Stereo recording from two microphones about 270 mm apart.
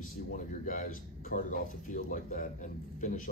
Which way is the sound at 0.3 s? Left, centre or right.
Left.